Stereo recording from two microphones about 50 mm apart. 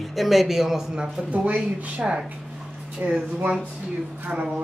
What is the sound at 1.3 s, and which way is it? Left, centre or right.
Speech, right.